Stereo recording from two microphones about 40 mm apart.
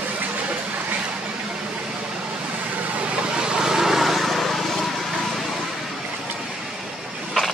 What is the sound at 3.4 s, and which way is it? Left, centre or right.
Vehicle, centre.